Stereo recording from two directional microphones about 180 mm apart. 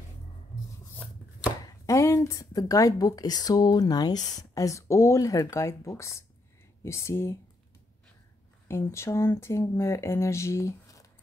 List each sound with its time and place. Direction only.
1.9 s speech: 15° left (ahead or behind)
8.6 s speech: 15° left (ahead or behind)